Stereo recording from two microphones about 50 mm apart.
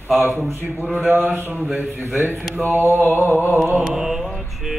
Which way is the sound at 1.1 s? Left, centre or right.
Right.